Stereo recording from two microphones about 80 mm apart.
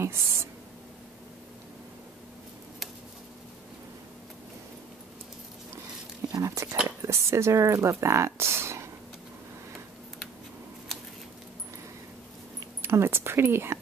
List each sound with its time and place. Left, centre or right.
0.0 s a sound: right
6.4 s speech: right
12.8 s speech: right